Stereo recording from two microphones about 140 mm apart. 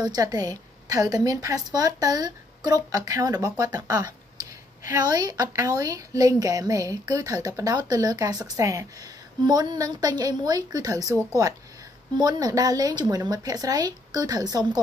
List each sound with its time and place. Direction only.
0.0 s a woman's voice: 30° right (ahead or behind)
12.2 s a woman's voice: 30° right (ahead or behind)